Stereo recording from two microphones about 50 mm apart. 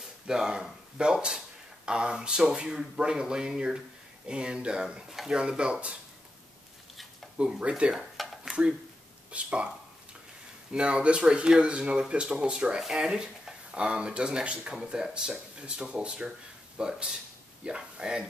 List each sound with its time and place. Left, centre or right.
0.3 s speech: centre
7.3 s speech: centre
8.0 s a sound: centre
9.3 s speech: right
10.7 s speech: right